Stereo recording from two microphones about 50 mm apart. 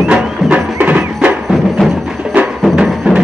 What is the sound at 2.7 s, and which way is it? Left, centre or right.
Music, centre.